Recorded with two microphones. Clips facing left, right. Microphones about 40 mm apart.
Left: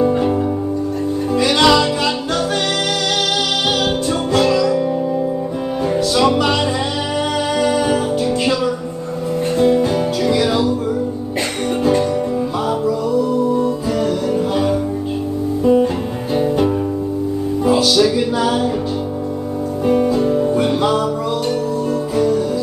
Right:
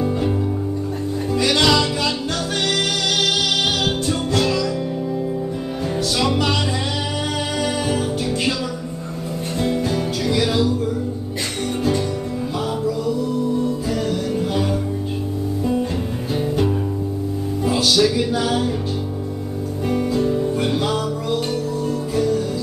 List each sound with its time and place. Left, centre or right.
1.3 s music: centre
4.3 s music: centre
5.9 s music: centre
7.6 s music: centre
9.6 s music: centre
13.6 s music: centre
19.9 s music: centre
22.1 s music: centre